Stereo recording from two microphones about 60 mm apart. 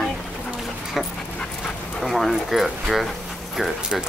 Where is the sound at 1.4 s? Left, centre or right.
Centre.